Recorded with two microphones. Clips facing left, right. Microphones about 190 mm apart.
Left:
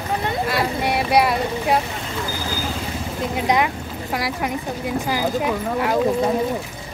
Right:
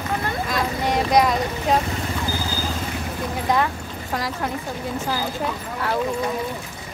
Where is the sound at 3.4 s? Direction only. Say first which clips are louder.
Left 2 dB; 15° left (ahead or behind).